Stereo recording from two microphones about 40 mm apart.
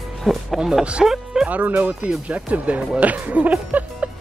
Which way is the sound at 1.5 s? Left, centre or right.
Right.